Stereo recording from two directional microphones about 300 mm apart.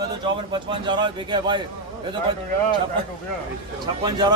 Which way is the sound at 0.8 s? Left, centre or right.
Centre.